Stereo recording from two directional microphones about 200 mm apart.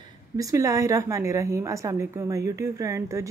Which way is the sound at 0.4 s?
15° right (ahead or behind).